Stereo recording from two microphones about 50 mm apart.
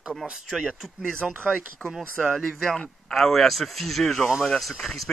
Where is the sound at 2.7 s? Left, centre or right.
Centre.